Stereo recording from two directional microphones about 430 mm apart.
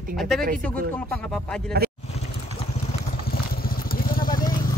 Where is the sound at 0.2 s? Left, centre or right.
Centre.